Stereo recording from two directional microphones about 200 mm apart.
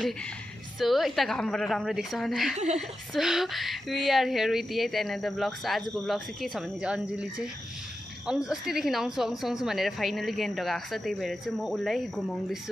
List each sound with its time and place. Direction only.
0.7 s speech: centre (ahead or behind)
2.5 s a woman's voice: 35° right (ahead or behind)
3.2 s speech: centre (ahead or behind)